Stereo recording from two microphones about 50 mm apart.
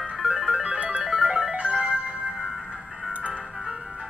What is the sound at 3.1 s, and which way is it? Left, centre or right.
Music, right.